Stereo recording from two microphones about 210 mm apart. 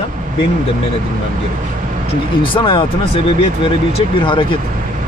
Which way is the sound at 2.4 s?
25° left (ahead or behind).